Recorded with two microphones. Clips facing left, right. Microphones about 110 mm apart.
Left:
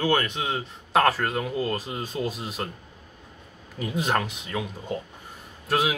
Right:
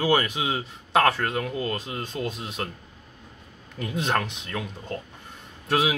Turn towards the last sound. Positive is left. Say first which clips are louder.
# right 1 dB
turn(degrees=0)  # may be behind; listen again after turning